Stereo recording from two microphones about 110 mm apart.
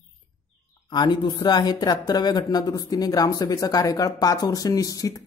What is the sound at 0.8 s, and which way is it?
Speech, 40° left (ahead or behind).